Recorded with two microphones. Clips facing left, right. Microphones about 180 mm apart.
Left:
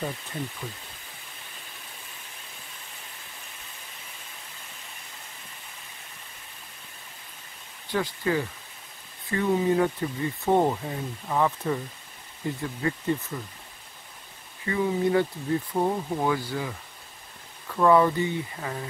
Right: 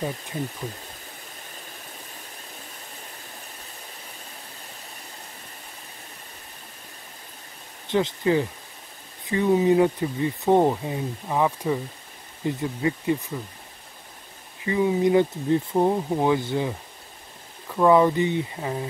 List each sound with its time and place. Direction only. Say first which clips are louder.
7.9 s speech: right 5 dB; 20° right (ahead or behind)
14.6 s speech: right 4 dB; 15° right (ahead or behind)